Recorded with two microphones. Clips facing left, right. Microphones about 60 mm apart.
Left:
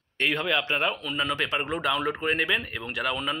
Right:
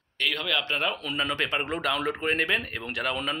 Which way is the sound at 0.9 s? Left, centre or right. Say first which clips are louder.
Left 1 dB; centre.